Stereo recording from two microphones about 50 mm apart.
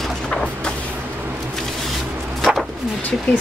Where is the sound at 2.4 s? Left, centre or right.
Centre.